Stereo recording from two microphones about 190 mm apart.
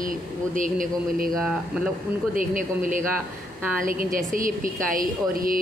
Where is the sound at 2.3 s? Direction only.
45° right (ahead or behind).